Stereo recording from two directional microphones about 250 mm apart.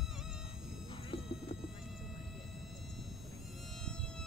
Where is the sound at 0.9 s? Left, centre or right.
Left.